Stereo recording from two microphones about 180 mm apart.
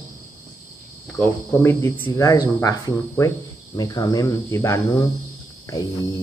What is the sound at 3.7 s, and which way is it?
Cricket, 20° left (ahead or behind).